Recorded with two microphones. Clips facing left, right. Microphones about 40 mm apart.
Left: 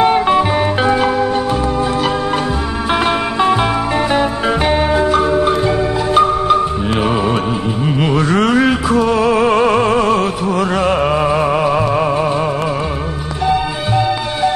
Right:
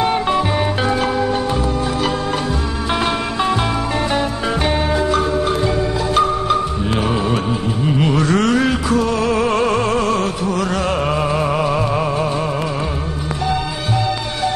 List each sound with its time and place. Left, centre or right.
0.0 s music: centre
2.9 s music: centre
7.8 s music: centre
13.5 s music: centre